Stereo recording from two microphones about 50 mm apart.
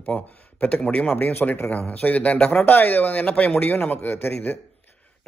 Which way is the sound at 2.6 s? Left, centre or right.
Left.